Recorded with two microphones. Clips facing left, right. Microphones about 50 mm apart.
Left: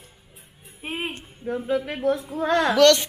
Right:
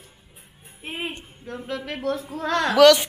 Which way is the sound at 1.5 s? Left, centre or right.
Centre.